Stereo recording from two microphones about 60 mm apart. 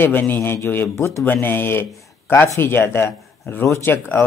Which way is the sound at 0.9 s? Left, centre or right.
Left.